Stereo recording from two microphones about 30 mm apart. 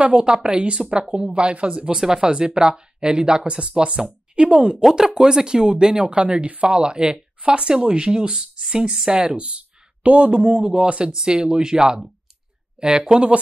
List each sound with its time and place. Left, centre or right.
0.2 s speech: right
5.2 s speech: right
6.0 s speech: right
6.6 s speech: right
10.6 s speech: right
11.1 s speech: right